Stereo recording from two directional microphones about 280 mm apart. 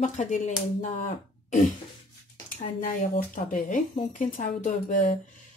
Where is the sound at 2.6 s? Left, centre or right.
Left.